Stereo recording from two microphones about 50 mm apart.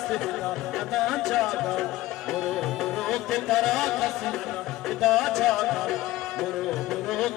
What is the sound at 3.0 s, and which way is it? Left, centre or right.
Music, centre.